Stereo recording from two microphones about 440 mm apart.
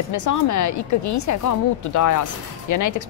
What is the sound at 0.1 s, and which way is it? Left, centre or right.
Speech, left.